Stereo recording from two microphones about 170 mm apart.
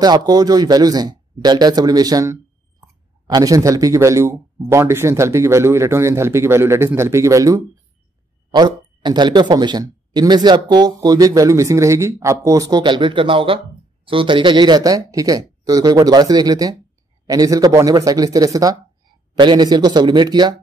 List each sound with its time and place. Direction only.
0.0 s speech: 25° right (ahead or behind)